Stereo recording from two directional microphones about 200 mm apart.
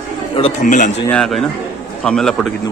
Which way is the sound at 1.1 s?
Centre (ahead or behind).